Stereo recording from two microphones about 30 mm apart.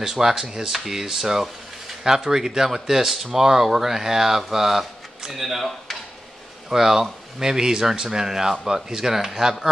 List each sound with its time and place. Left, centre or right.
0.0 s speech: centre
6.7 s speech: centre